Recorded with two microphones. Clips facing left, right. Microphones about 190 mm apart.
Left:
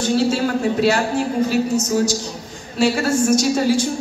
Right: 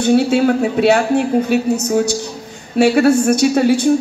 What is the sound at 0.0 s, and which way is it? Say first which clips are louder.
A woman's voice: right 5 dB; 60° right (ahead or behind).